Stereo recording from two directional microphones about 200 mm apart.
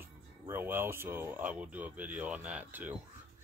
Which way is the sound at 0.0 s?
10° right (ahead or behind).